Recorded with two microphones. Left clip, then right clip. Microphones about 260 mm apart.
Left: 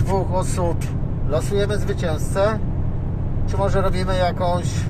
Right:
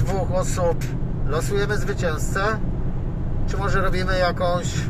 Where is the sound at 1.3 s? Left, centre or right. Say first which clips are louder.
Left 2 dB; centre.